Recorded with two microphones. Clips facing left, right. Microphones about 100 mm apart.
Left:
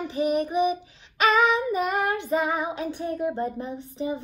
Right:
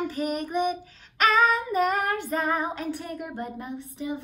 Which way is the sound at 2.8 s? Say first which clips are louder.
Left 5 dB; 25° left (ahead or behind).